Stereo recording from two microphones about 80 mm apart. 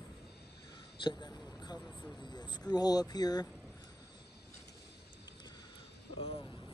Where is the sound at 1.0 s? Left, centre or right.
Left.